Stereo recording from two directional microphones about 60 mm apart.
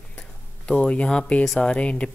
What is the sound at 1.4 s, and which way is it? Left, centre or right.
Speech, centre.